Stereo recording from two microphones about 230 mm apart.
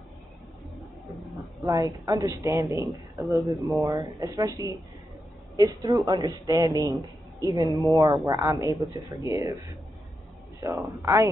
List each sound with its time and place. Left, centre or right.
1.7 s speech: centre
10.6 s speech: centre